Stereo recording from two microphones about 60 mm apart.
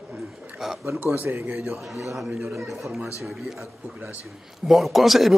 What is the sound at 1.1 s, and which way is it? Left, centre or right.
Speech, right.